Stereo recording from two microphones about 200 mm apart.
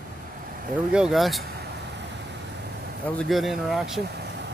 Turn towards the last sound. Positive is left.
turn(degrees=0)  # may be behind; listen again after turning